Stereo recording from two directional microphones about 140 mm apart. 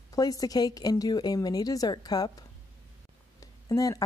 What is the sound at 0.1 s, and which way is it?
Speech, 25° left (ahead or behind).